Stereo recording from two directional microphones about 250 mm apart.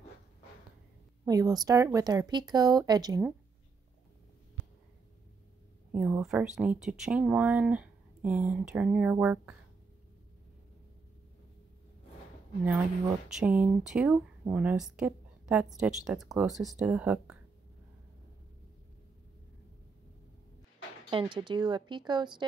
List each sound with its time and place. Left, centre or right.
1.2 s speech: centre
5.9 s speech: centre
13.3 s speech: centre
21.1 s speech: centre